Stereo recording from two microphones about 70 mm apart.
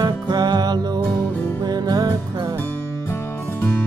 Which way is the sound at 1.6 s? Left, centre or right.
Right.